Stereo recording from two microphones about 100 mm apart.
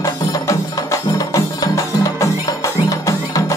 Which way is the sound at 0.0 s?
35° left (ahead or behind).